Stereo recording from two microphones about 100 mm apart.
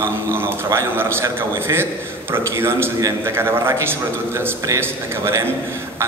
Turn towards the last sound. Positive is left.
turn(degrees=-30)  # may be behind; listen again after turning